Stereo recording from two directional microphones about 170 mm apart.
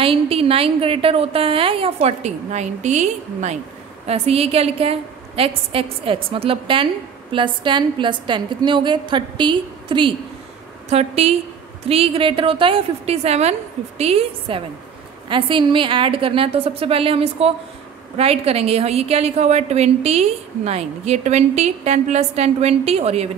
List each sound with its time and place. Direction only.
0.0 s a woman's voice: 35° right (ahead or behind)